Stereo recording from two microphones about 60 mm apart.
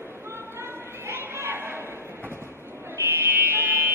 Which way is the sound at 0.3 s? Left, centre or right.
Right.